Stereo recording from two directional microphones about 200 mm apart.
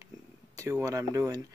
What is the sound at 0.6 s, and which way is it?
Speech, 15° right (ahead or behind).